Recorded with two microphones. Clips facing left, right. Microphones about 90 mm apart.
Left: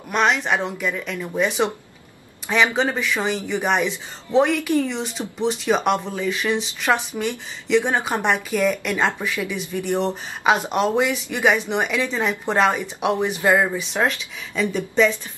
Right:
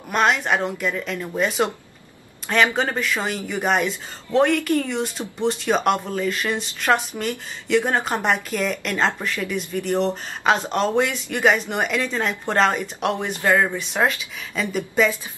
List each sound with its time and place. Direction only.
0.1 s speech: 5° right (ahead or behind); by 13.7 s 15° left (ahead or behind)
13.7 s speech: centre (ahead or behind)